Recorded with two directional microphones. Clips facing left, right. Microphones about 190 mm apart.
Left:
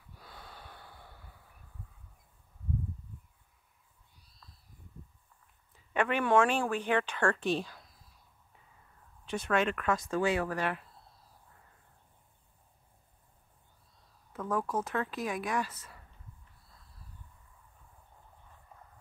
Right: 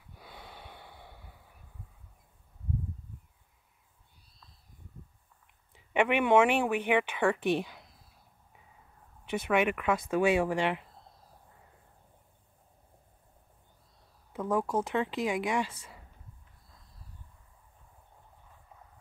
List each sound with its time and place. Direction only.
0.2 s snort: 15° right (ahead or behind)
5.9 s speech: 20° right (ahead or behind)
9.3 s speech: 10° right (ahead or behind)
10.5 s speech: 20° right (ahead or behind)
14.3 s speech: 15° right (ahead or behind)
15.7 s speech: 10° right (ahead or behind)